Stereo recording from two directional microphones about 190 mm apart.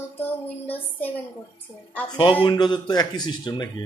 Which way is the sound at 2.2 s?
25° left (ahead or behind).